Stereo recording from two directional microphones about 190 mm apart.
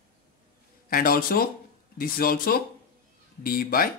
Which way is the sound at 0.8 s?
50° left (ahead or behind).